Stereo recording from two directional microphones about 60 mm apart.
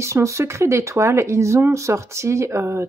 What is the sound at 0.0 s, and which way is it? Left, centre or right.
Speech, right.